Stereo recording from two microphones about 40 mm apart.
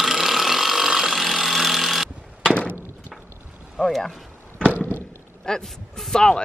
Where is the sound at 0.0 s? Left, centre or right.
Centre.